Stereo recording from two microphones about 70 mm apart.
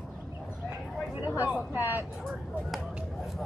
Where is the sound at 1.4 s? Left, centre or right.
Right.